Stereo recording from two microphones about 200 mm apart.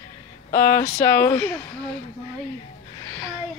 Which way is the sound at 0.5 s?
15° left (ahead or behind).